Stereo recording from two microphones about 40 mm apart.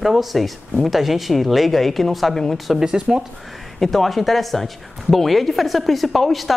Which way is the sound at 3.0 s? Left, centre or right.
Right.